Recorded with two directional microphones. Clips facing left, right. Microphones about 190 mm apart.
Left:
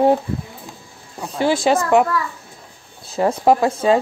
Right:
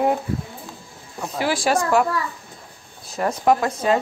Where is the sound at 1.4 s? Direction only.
25° left (ahead or behind).